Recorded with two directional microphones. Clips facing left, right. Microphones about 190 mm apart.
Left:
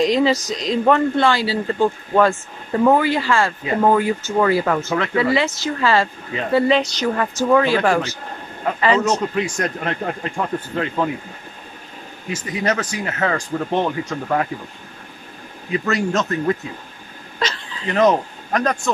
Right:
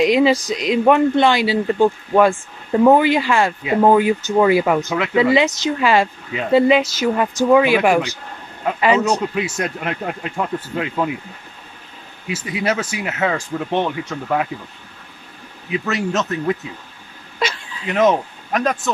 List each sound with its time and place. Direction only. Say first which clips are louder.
0.0 s speech: right 2 dB; 10° right (ahead or behind)
12.3 s a man's voice: even; 10° right (ahead or behind)
15.7 s a man's voice: left 1 dB; centre (ahead or behind)